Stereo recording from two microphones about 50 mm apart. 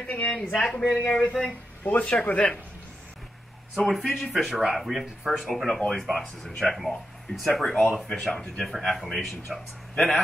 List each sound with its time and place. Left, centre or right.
0.3 s speech: centre
1.9 s speech: left
3.7 s speech: centre
5.5 s speech: centre
8.3 s speech: centre
8.8 s speech: centre